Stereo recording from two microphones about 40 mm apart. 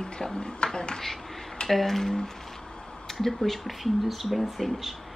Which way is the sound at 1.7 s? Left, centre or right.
Centre.